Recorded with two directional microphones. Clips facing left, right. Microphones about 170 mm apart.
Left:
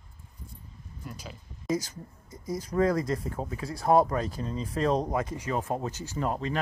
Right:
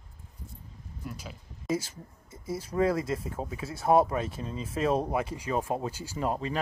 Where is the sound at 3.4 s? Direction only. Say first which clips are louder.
Left 1 dB; 5° right (ahead or behind).